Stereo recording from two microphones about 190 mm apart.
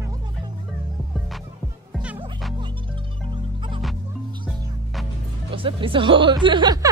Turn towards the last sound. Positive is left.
turn(degrees=-25)  # may be behind; listen again after turning